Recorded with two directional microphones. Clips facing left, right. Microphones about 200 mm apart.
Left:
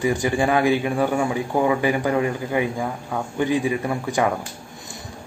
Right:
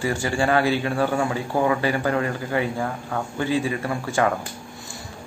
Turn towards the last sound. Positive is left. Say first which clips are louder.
# left 1 dB
turn(degrees=15)  # may be behind; listen again after turning